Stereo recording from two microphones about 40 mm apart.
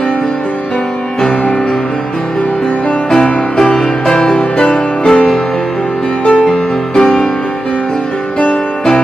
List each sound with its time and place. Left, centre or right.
3.1 s music: centre
6.2 s music: left
7.0 s music: centre